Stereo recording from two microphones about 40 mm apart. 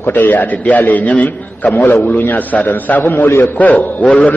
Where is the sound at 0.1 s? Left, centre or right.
Left.